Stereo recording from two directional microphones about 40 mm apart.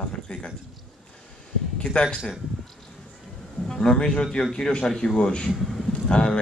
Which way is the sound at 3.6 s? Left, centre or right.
Centre.